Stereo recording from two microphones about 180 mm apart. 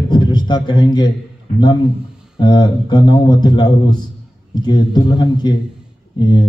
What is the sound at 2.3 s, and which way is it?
A man's voice, 25° left (ahead or behind).